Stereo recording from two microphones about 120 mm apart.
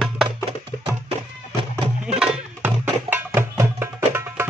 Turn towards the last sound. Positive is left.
turn(degrees=-20)  # may be behind; listen again after turning